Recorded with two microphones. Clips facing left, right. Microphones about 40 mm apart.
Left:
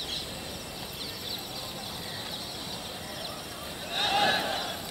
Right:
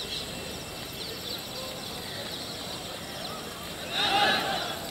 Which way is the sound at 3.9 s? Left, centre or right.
Centre.